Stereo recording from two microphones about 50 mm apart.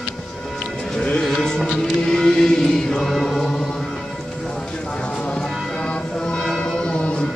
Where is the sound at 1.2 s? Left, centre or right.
Centre.